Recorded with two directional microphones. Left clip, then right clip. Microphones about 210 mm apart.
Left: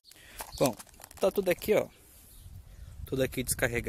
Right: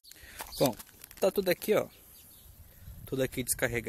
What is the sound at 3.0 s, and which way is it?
Speech, 10° left (ahead or behind).